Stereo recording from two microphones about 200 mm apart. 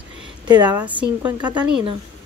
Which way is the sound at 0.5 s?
20° right (ahead or behind).